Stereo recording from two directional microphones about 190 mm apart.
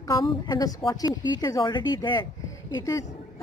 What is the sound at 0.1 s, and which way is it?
A woman's voice, 20° left (ahead or behind).